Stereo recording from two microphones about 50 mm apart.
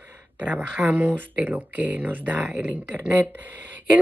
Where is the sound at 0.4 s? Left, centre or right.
Right.